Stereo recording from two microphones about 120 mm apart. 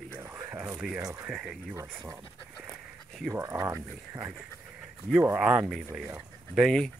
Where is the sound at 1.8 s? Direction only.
25° right (ahead or behind).